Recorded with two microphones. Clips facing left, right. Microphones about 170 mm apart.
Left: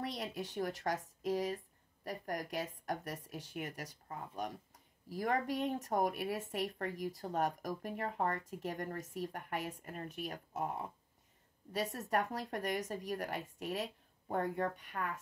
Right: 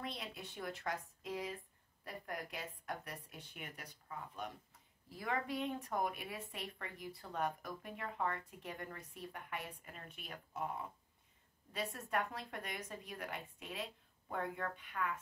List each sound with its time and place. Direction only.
0.0 s speech: 40° left (ahead or behind)